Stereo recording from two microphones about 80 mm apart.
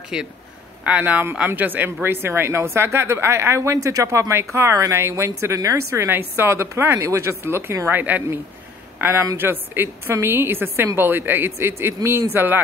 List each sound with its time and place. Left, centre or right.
0.1 s a woman's voice: centre; by 6.0 s right
6.0 s a woman's voice: right
7.9 s a man's voice: right
9.4 s a man's voice: right